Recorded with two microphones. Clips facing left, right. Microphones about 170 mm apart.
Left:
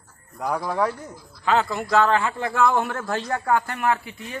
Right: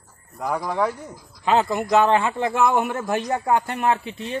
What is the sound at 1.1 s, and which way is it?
A man's voice, 20° right (ahead or behind).